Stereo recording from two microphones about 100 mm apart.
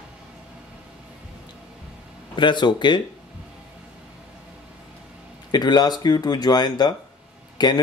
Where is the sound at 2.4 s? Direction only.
50° left (ahead or behind).